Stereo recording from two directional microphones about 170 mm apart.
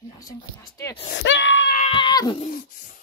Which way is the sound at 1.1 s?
90° left.